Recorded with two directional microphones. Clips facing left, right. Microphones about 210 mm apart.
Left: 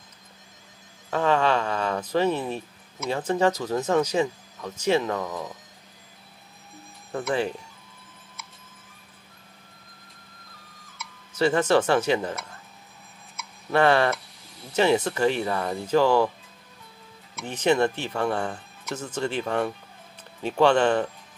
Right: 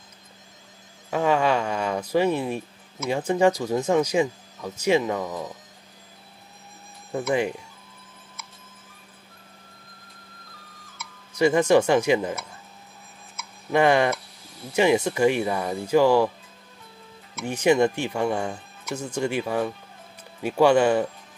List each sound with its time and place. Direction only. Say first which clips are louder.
1.1 s speech: right 1 dB; 10° right (ahead or behind)
7.2 s speech: right 2 dB; 15° right (ahead or behind)
11.0 s tick-tock: even; centre (ahead or behind)
11.3 s speech: right 3 dB; 10° right (ahead or behind)
13.7 s speech: right 1 dB; 15° right (ahead or behind)
17.4 s speech: right 2 dB; 10° right (ahead or behind)